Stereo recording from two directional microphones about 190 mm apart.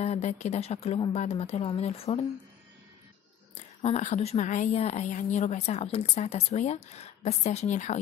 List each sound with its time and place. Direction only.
0.0 s a woman's voice: 35° left (ahead or behind)
3.5 s a woman's voice: 35° left (ahead or behind)